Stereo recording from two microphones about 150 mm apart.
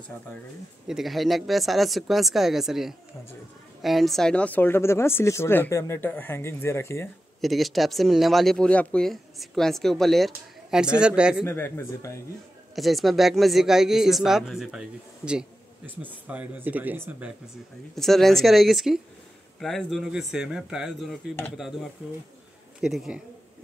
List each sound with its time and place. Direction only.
0.8 s speech: centre (ahead or behind); by 7.1 s 20° left (ahead or behind)
7.4 s speech: centre (ahead or behind)
11.4 s speech: 15° left (ahead or behind)
12.7 s speech: centre (ahead or behind)
17.9 s speech: centre (ahead or behind)